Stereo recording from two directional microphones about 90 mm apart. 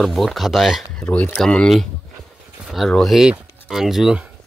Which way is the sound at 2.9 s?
5° left (ahead or behind).